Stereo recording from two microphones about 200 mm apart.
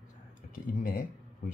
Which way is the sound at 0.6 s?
40° left (ahead or behind).